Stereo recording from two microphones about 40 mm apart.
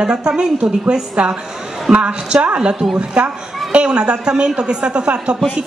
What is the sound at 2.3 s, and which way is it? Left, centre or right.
A woman's voice, right.